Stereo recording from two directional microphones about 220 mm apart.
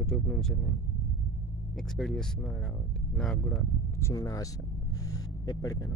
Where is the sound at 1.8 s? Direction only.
Centre (ahead or behind).